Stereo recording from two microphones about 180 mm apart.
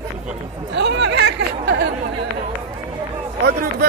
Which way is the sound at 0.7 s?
75° right (ahead or behind).